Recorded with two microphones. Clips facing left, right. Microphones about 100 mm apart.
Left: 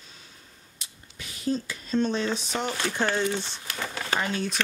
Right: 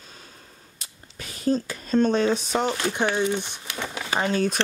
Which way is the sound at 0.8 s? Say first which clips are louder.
Right 3 dB; 45° right (ahead or behind).